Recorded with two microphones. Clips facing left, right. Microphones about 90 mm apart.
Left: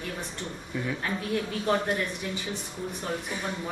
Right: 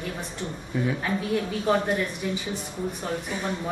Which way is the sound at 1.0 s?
Centre (ahead or behind).